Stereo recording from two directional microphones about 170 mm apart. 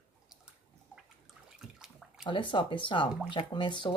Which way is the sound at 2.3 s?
30° left (ahead or behind).